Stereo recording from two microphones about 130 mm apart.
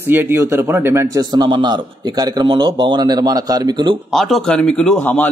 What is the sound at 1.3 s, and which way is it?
Speech, 35° right (ahead or behind).